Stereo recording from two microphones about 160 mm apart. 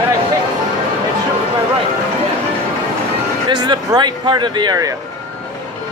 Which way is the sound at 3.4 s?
25° right (ahead or behind).